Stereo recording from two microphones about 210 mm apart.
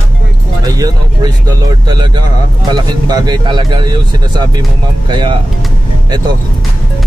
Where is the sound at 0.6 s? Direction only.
15° right (ahead or behind).